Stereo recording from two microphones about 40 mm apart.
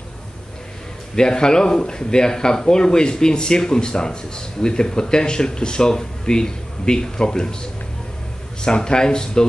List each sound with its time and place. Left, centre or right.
1.1 s speech: centre
8.6 s speech: left